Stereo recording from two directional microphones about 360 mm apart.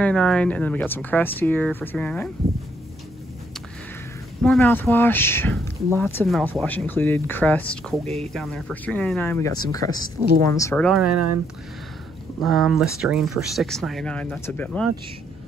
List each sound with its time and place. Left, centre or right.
0.0 s speech: centre
4.4 s speech: centre
11.0 s speech: right
12.4 s speech: centre